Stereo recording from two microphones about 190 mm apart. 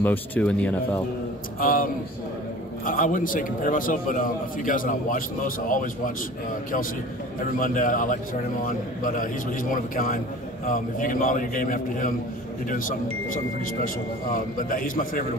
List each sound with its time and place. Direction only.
0.0 s speech: 10° left (ahead or behind)
1.6 s a man's voice: 45° left (ahead or behind)
7.5 s a man's voice: 45° left (ahead or behind)
14.3 s a man's voice: 45° left (ahead or behind)